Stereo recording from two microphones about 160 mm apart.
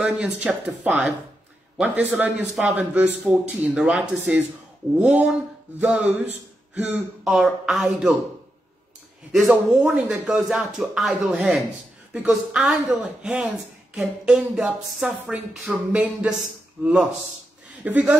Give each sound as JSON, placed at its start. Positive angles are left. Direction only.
{"t": 0.0, "sound": "speech", "side_deg": -5}
{"t": 9.3, "sound": "speech", "side_deg": -5}